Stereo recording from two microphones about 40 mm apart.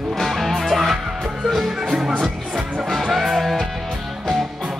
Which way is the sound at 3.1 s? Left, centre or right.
Centre.